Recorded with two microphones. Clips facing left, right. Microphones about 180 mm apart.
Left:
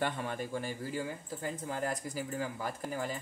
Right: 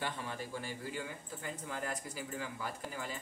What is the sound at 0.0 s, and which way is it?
Speech, 55° left (ahead or behind).